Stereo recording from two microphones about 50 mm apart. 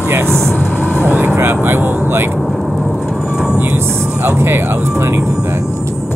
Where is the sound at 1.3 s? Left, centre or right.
Right.